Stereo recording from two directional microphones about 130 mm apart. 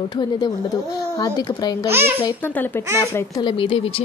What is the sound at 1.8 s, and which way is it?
Speech, 15° right (ahead or behind).